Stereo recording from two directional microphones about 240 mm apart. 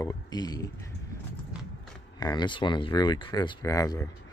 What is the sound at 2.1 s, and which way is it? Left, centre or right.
Speech, centre.